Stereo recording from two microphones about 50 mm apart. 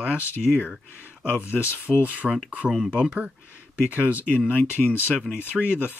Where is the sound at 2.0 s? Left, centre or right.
Right.